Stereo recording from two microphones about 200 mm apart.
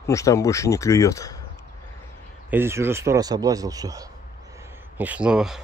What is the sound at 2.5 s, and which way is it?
Speech, 10° right (ahead or behind).